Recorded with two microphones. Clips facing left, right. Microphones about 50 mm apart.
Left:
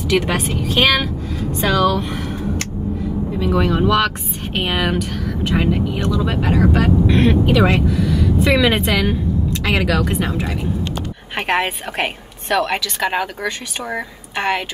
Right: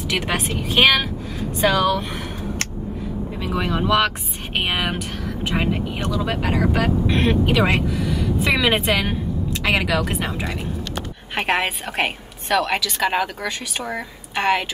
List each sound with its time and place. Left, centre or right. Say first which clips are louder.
0.1 s speech: left 5 dB; centre
3.3 s a woman's voice: left 6 dB; centre
7.2 s a woman's voice: left 1 dB; centre